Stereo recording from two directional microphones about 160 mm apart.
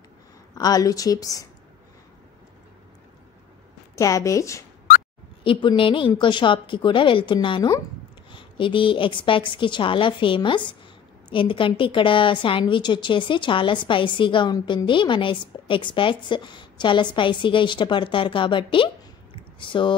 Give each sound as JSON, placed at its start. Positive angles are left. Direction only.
{"t": 0.6, "sound": "a woman's voice", "side_deg": 25}
{"t": 3.9, "sound": "a woman's voice", "side_deg": 20}
{"t": 5.4, "sound": "a woman's voice", "side_deg": 30}